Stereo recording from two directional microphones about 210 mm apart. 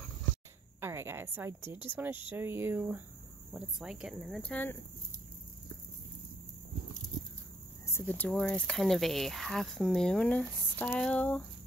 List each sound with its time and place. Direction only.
0.7 s a woman's voice: 10° right (ahead or behind); by 4.7 s 5° left (ahead or behind)
7.9 s speech: 10° left (ahead or behind)